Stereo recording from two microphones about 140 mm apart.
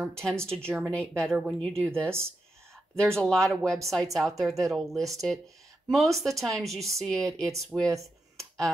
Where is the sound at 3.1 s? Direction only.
5° left (ahead or behind).